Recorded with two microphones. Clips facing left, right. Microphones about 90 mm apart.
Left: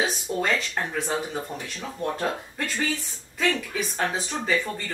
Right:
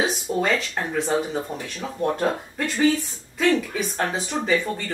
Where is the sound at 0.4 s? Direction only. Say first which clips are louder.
Right 2 dB; centre (ahead or behind).